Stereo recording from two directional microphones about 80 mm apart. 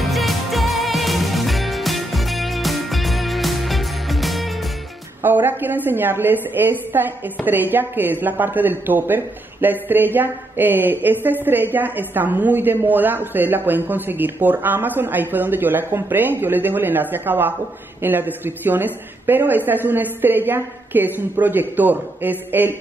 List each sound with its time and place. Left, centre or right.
0.0 s music: centre
5.2 s a woman's voice: right